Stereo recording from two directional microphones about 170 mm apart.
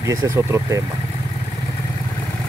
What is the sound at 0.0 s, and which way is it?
Speech, 20° right (ahead or behind).